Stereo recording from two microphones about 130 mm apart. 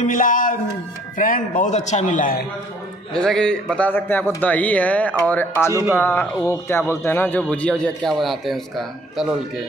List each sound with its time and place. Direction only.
0.0 s speech: 90° left; by 2.3 s 75° left (ahead or behind)
3.1 s a man's voice: 5° left (ahead or behind)
5.7 s speech: 20° right (ahead or behind)
6.4 s a man's voice: 20° left (ahead or behind); by 9.4 s centre (ahead or behind)